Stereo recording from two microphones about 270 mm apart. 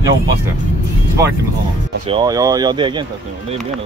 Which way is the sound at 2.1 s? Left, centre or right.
Centre.